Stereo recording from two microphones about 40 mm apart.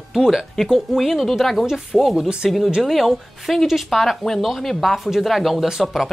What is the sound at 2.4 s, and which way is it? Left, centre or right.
A woman's voice, centre.